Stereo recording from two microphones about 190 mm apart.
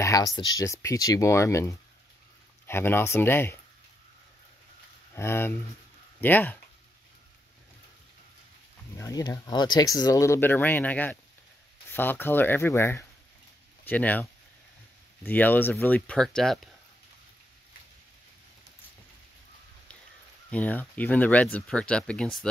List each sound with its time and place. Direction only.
0.0 s a sound: 20° left (ahead or behind)
0.4 s speech: 20° left (ahead or behind)
5.1 s speech: 10° left (ahead or behind)
8.9 s speech: 20° left (ahead or behind); by 16.6 s centre (ahead or behind)
20.5 s speech: 10° left (ahead or behind)